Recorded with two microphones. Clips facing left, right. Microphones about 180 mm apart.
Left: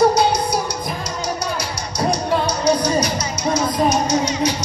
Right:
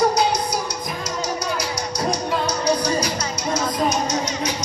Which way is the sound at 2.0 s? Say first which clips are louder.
Left 5 dB; 30° left (ahead or behind).